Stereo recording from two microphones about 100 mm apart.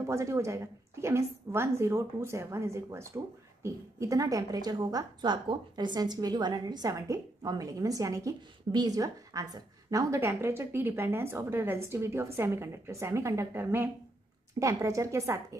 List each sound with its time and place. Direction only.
0.0 s a woman's voice: 30° right (ahead or behind)